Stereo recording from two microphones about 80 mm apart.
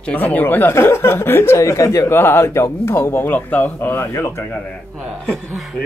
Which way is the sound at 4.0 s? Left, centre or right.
Left.